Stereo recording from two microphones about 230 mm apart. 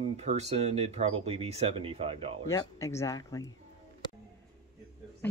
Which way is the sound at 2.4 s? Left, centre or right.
Centre.